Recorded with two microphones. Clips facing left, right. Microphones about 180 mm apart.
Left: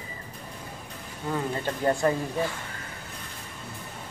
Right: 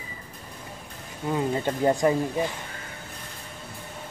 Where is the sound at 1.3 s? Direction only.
15° right (ahead or behind).